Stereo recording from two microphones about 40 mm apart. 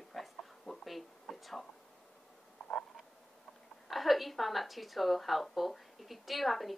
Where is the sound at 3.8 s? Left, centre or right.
Centre.